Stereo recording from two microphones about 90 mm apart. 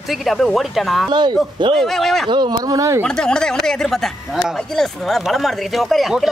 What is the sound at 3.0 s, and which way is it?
Speech, 10° left (ahead or behind).